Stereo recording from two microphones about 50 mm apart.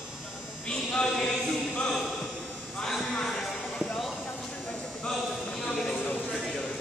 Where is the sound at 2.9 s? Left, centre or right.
Centre.